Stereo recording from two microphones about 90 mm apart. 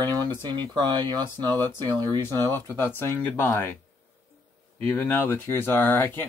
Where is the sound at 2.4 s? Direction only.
25° left (ahead or behind).